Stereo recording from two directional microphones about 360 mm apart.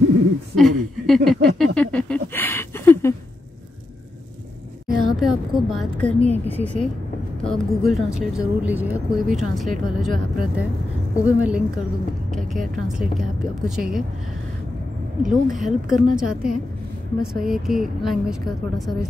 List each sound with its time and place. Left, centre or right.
0.6 s a sound: centre
4.8 s vehicle: centre
6.6 s speech: centre
15.5 s speech: centre
16.1 s a woman's voice: right
17.2 s speech: centre